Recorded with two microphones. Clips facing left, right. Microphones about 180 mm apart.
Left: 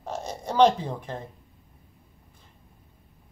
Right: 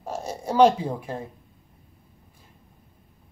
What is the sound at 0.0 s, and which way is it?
Speech, 10° right (ahead or behind).